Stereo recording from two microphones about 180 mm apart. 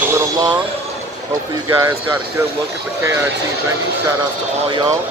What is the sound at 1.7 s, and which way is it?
Speech, 20° right (ahead or behind).